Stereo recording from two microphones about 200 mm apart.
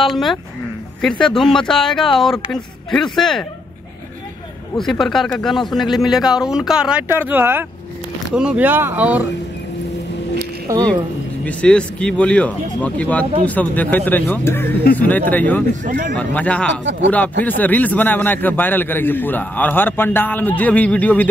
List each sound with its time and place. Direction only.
0.0 s speech: centre (ahead or behind)
4.7 s speech: centre (ahead or behind)
10.7 s speech: 15° right (ahead or behind)
11.4 s speech: 5° left (ahead or behind)
15.8 s speech: 40° right (ahead or behind)
16.2 s speech: 5° left (ahead or behind)